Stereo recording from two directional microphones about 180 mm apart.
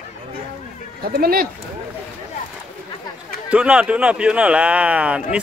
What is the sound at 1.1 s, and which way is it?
Speech, 55° right (ahead or behind).